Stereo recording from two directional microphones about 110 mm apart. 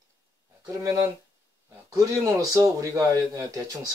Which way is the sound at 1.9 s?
35° right (ahead or behind).